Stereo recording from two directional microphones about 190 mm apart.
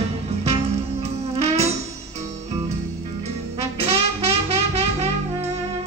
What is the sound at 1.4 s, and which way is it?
Music, 35° right (ahead or behind).